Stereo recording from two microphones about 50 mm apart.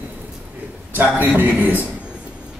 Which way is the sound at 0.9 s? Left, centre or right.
Right.